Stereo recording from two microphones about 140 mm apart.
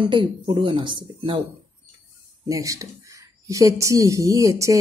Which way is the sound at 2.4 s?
25° right (ahead or behind).